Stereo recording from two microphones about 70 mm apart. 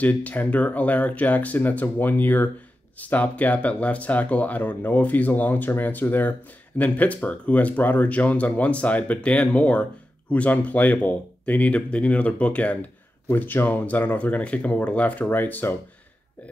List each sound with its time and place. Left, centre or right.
0.0 s speech: left
13.3 s speech: left